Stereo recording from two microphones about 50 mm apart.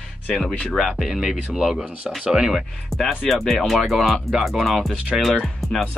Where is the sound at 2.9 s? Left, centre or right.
Centre.